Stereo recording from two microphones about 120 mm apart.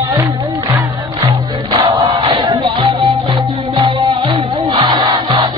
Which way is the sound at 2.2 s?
35° right (ahead or behind).